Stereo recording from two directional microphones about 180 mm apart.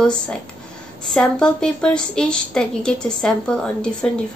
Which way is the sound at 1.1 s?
5° left (ahead or behind).